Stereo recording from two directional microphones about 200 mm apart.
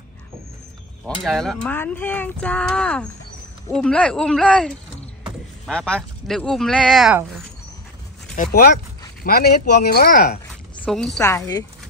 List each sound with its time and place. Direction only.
1.0 s speech: centre (ahead or behind)
8.5 s speech: 50° left (ahead or behind)
10.8 s a woman's voice: 5° left (ahead or behind)
11.1 s speech: 15° left (ahead or behind)